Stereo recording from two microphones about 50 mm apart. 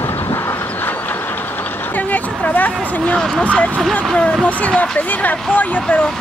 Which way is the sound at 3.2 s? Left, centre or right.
Centre.